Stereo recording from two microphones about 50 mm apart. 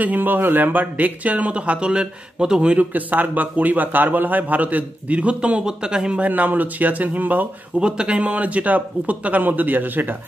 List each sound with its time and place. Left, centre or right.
0.0 s speech: right
2.9 s speech: right; by 6.2 s centre
6.2 s speech: right
7.8 s speech: right